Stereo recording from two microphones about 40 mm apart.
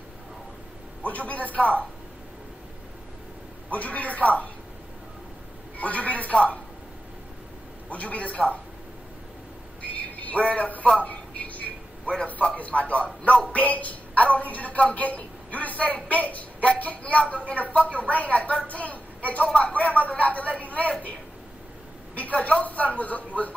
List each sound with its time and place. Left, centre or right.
1.0 s a woman's voice: left
3.7 s a woman's voice: left
5.8 s a woman's voice: left
7.9 s a woman's voice: left
9.9 s a sound: left
10.4 s a woman's voice: left
11.0 s a sound: left
12.5 s a woman's voice: left
19.4 s speech: left
19.7 s a woman's voice: left
22.1 s a woman's voice: left